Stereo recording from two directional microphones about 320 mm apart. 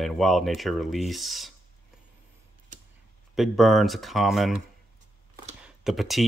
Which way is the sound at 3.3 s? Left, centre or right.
Centre.